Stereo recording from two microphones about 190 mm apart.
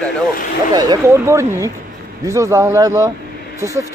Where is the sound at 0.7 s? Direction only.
20° right (ahead or behind).